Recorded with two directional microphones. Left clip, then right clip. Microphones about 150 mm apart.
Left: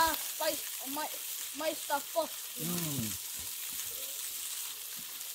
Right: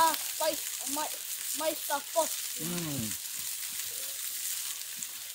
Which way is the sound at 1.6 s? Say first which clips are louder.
Right 1 dB; centre (ahead or behind).